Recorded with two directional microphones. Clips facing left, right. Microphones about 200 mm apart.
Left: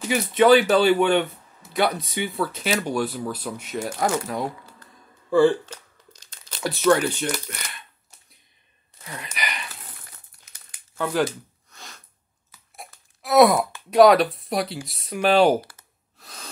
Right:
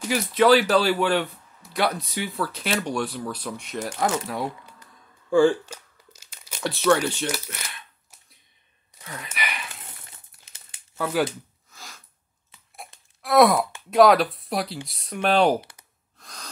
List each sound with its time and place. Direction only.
0.0 s speech: centre (ahead or behind)
5.5 s crumpling: 10° right (ahead or behind)
9.0 s a sound: centre (ahead or behind)
10.1 s crumpling: 25° right (ahead or behind)
11.7 s sneeze: centre (ahead or behind)
13.2 s sigh: centre (ahead or behind)
13.8 s speech: centre (ahead or behind)
16.2 s gasp: 5° left (ahead or behind)